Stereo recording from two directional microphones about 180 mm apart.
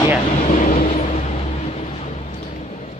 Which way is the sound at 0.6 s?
40° left (ahead or behind).